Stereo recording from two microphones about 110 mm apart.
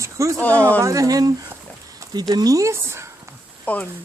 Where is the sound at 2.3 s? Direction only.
35° right (ahead or behind).